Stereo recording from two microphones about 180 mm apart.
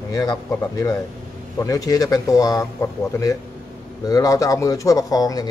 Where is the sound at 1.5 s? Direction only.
20° left (ahead or behind).